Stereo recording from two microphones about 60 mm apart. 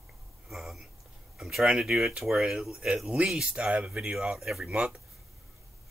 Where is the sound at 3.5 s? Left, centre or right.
Centre.